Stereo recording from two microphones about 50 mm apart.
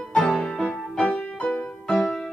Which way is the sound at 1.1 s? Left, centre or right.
Left.